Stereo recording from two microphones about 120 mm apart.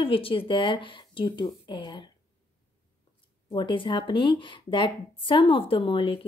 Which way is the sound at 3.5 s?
45° left (ahead or behind).